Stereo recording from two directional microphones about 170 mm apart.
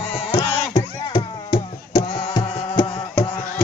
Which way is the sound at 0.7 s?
25° left (ahead or behind).